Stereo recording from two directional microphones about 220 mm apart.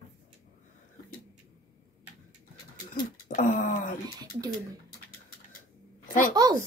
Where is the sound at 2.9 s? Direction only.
40° left (ahead or behind).